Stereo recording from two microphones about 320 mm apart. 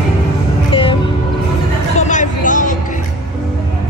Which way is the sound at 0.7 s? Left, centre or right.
Centre.